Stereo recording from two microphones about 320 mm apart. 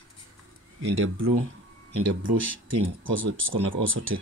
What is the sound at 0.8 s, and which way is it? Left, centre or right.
Speech, right.